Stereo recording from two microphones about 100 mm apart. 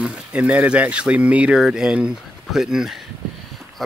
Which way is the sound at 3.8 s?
Centre (ahead or behind).